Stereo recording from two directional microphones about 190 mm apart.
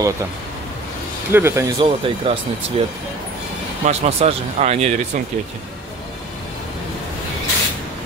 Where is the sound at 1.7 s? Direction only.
30° right (ahead or behind).